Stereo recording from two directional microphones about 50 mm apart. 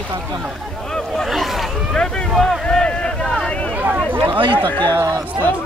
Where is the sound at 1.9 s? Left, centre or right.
Centre.